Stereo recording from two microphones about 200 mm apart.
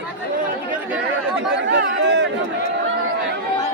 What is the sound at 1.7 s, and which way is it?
Chatter, 60° right (ahead or behind).